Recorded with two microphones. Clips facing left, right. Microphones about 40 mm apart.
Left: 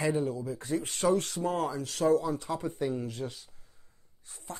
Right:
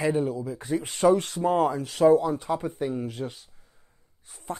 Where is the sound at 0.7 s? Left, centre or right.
Right.